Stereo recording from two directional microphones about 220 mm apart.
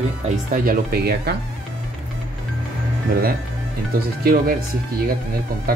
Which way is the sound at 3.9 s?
40° right (ahead or behind).